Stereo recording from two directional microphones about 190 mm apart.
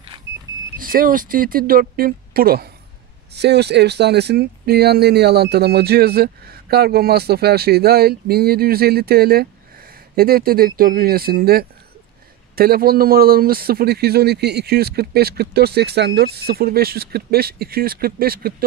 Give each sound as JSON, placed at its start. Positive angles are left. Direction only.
{"t": 0.1, "sound": "vehicle", "side_deg": -25}
{"t": 0.7, "sound": "a man's voice", "side_deg": -50}